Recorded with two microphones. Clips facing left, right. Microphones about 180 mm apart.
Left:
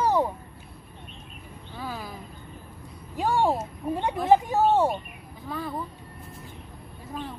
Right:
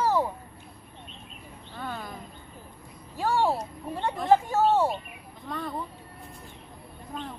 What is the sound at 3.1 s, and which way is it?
Speech, 15° left (ahead or behind).